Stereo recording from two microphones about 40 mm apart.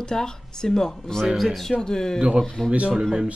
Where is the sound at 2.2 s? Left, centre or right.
Right.